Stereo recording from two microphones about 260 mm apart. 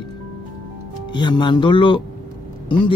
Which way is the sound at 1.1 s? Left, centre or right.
Centre.